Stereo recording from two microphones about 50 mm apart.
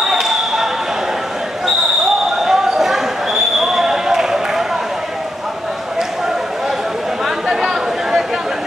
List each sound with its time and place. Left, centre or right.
0.0 s basketball bounce: centre
2.4 s basketball bounce: centre
7.2 s a sound: centre